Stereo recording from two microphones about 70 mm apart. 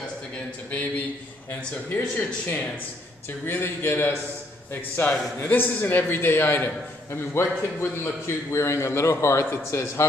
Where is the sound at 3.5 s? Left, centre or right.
Left.